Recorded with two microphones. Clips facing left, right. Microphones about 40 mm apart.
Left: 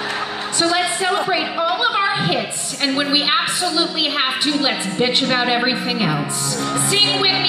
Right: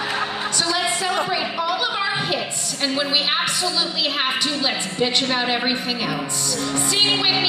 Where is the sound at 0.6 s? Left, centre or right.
Left.